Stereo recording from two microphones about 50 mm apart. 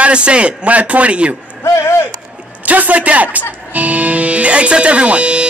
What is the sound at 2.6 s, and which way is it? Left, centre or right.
Speech, right.